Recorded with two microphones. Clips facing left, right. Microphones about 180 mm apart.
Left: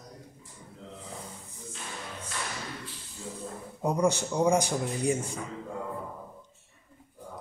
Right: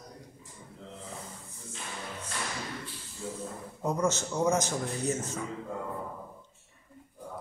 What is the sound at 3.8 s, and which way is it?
A man's voice, 15° left (ahead or behind).